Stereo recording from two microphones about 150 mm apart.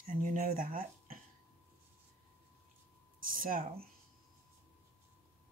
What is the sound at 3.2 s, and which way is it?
Speech, 70° right (ahead or behind).